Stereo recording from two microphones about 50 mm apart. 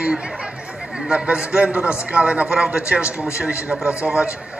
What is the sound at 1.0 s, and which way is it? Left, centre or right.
A man's voice, centre.